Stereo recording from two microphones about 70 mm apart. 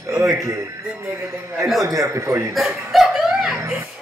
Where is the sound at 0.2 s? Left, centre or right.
Right.